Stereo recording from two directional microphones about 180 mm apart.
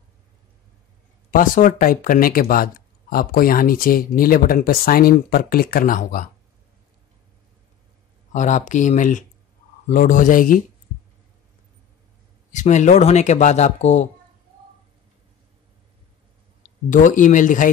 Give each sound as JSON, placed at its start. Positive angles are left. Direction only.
{"t": 1.3, "sound": "speech", "side_deg": 50}
{"t": 8.3, "sound": "speech", "side_deg": 40}
{"t": 12.5, "sound": "speech", "side_deg": 40}
{"t": 16.9, "sound": "speech", "side_deg": 45}